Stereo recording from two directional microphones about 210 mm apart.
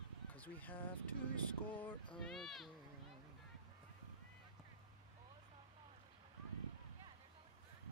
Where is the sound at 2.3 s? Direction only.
Centre (ahead or behind).